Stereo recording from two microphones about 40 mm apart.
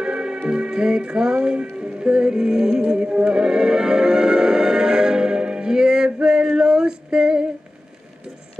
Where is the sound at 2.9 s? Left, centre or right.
Right.